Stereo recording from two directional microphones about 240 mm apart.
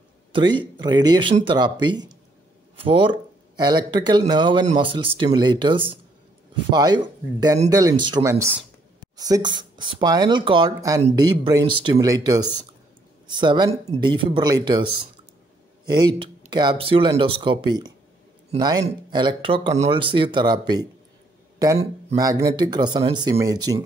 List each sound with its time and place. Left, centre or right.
0.3 s speech: centre